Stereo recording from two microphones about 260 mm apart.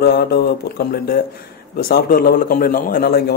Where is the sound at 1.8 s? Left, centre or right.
Left.